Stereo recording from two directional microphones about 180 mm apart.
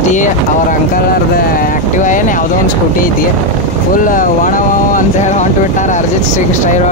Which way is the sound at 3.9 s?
50° left (ahead or behind).